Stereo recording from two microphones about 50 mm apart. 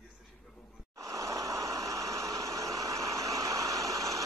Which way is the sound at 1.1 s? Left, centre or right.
Right.